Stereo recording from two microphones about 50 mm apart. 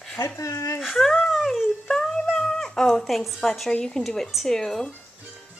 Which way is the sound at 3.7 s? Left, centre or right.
Centre.